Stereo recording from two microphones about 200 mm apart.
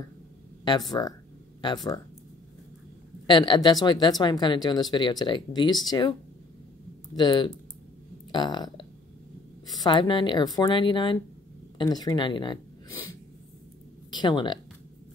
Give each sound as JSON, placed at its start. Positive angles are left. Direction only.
{"t": 1.0, "sound": "speech", "side_deg": 20}
{"t": 3.3, "sound": "a woman's voice", "side_deg": 20}
{"t": 7.2, "sound": "a woman's voice", "side_deg": 20}
{"t": 9.8, "sound": "a woman's voice", "side_deg": 25}
{"t": 14.1, "sound": "speech", "side_deg": 20}